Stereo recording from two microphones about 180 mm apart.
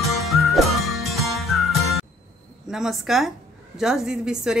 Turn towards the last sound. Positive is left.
turn(degrees=-5)  # may be behind; listen again after turning